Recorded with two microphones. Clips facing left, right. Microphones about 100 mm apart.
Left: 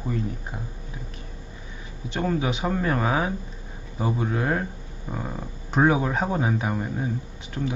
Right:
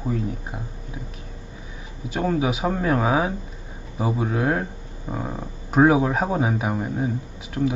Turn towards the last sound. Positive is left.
turn(degrees=-10)  # may be behind; listen again after turning